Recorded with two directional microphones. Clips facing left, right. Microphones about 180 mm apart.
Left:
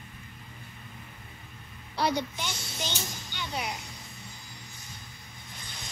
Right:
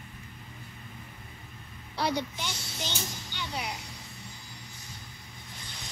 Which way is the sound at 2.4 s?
50° left (ahead or behind).